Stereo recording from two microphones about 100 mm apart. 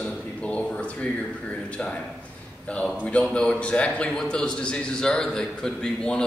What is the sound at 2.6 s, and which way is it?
A man's voice, 10° left (ahead or behind).